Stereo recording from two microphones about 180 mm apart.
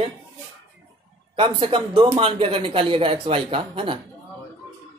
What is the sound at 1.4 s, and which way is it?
Speech, 30° right (ahead or behind).